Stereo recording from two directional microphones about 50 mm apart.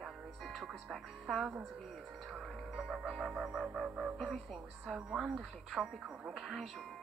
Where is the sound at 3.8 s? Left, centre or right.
Centre.